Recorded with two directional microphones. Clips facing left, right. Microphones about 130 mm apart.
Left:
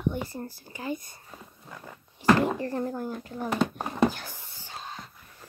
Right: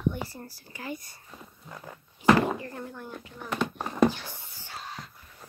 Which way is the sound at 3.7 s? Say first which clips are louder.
Right 1 dB; 10° left (ahead or behind).